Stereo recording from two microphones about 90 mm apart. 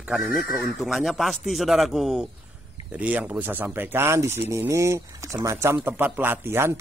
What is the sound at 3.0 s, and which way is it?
Speech, 15° right (ahead or behind).